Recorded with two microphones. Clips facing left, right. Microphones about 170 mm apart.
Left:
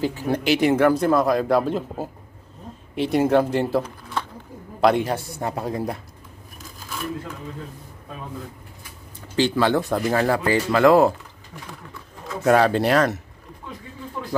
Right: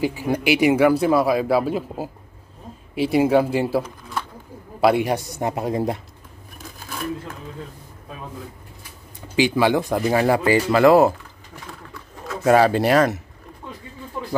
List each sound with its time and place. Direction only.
0.0 s speech: 10° right (ahead or behind)
4.8 s speech: 10° right (ahead or behind)
9.3 s speech: 10° right (ahead or behind)
12.4 s speech: 5° right (ahead or behind)